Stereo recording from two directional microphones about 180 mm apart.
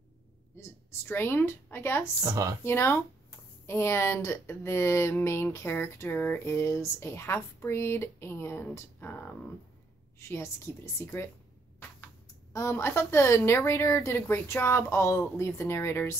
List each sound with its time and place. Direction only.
0.6 s speech: 15° left (ahead or behind)
2.2 s speech: 20° right (ahead or behind)
2.6 s speech: 15° left (ahead or behind)
12.5 s speech: 15° left (ahead or behind)